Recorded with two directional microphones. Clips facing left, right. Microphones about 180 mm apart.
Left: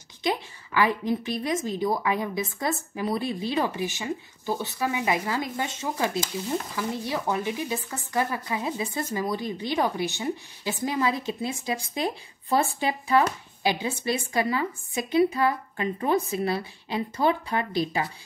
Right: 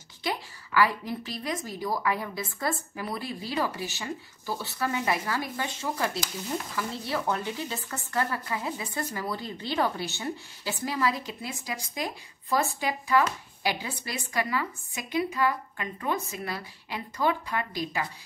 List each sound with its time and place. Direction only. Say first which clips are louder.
0.2 s speech: left 5 dB; 20° left (ahead or behind)